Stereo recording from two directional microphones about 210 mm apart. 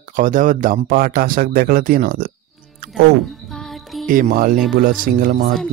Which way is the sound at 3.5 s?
Centre (ahead or behind).